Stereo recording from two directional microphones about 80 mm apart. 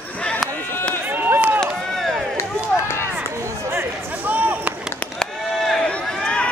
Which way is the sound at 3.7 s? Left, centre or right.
Right.